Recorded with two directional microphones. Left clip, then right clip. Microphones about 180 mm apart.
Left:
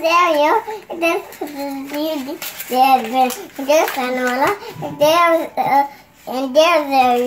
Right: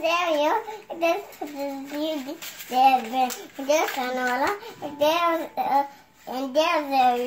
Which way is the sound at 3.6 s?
15° right (ahead or behind).